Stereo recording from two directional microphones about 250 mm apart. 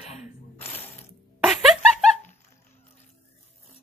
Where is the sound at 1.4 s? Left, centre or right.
Centre.